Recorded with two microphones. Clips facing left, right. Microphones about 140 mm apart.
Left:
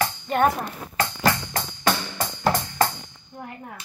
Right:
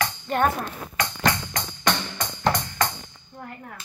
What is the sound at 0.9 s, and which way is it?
Music, 30° left (ahead or behind).